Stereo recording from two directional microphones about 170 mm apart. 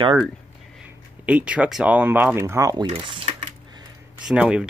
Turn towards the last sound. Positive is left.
turn(degrees=-5)  # may be behind; listen again after turning